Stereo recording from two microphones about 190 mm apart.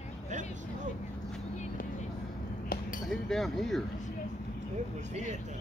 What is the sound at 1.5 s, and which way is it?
Vehicle, 40° left (ahead or behind).